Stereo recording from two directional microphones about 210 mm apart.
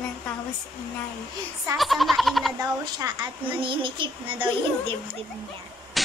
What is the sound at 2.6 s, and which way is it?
A woman's voice, 20° right (ahead or behind).